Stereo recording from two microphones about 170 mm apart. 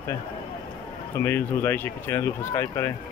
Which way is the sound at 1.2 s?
15° left (ahead or behind).